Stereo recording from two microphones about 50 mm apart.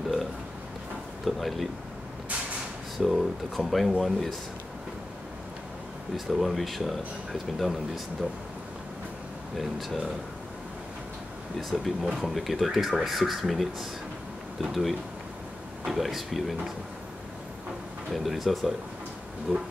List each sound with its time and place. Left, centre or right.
1.2 s speech: centre
3.0 s speech: centre
6.1 s speech: centre
9.6 s speech: centre
11.7 s speech: centre
18.1 s speech: centre